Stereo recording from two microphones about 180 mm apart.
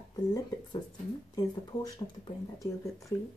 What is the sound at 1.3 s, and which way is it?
A woman's voice, 20° left (ahead or behind).